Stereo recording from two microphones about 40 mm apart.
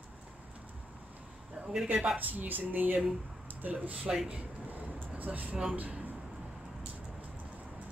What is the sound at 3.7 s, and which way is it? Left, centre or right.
Speech, right.